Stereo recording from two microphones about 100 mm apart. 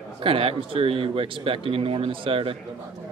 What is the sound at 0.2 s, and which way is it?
Speech, 70° right (ahead or behind).